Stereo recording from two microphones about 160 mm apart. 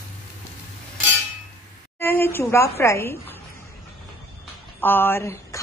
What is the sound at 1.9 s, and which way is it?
A woman's voice, 15° left (ahead or behind).